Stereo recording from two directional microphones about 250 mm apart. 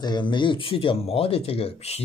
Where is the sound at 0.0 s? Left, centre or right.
Centre.